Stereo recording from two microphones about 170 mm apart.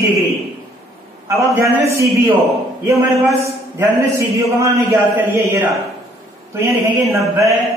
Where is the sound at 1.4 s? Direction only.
15° right (ahead or behind).